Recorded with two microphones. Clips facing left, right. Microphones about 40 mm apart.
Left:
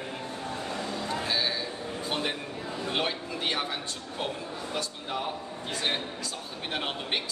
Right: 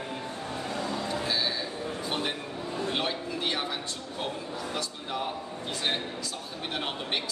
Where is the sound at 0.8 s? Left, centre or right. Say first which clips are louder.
Right 2 dB; right.